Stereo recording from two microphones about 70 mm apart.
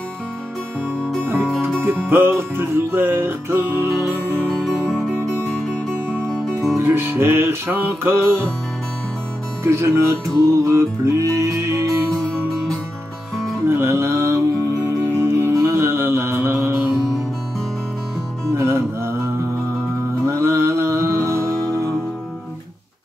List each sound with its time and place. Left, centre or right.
1.2 s music: right
4.5 s music: centre
6.8 s music: right
9.6 s music: right
13.7 s music: right
15.0 s music: right
18.5 s music: right